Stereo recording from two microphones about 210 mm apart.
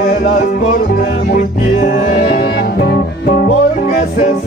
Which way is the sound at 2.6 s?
50° left (ahead or behind).